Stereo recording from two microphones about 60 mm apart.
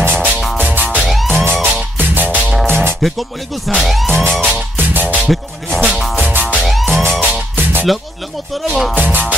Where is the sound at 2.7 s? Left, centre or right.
Right.